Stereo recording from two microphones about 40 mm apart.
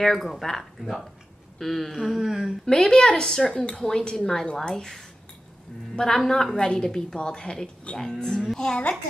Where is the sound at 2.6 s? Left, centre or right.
Centre.